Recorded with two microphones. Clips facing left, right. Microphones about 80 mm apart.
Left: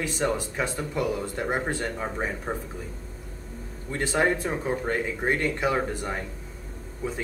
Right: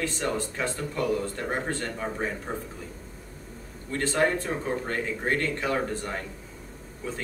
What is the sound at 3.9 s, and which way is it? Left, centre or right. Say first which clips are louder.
Speech: left 1 dB; centre.